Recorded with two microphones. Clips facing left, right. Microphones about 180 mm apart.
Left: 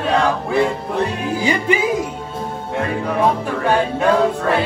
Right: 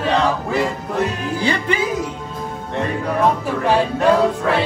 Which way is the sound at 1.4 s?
10° left (ahead or behind).